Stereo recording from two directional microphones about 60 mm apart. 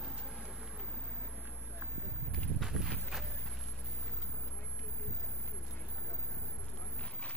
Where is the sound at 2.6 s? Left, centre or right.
Centre.